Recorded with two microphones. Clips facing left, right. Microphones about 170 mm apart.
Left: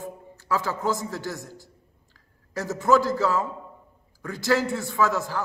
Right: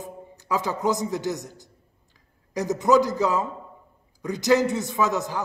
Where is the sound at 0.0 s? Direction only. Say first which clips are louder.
Left 1 dB; 15° right (ahead or behind).